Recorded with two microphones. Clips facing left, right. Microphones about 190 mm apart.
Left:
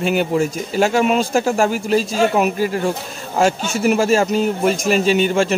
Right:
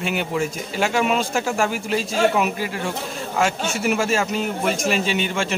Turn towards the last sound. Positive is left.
turn(degrees=40)  # may be behind; listen again after turning